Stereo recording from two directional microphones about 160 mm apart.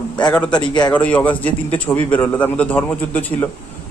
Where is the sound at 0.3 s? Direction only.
10° left (ahead or behind).